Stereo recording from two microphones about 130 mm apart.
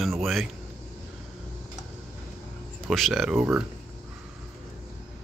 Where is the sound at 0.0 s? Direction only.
Centre (ahead or behind).